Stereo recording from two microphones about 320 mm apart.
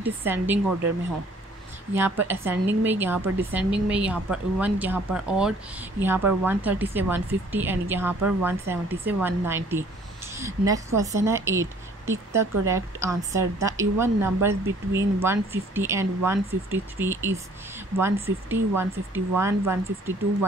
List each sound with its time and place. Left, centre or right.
0.0 s a woman's voice: centre
2.0 s a woman's voice: centre
18.0 s a woman's voice: centre
18.5 s a woman's voice: centre